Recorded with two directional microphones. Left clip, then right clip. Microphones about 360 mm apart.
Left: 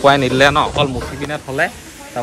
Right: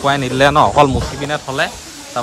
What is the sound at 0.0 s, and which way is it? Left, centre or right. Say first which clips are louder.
Speech: left 2 dB; centre.